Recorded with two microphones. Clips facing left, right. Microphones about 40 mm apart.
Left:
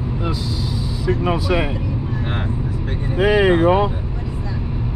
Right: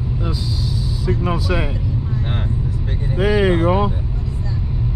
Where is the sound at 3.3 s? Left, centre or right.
Left.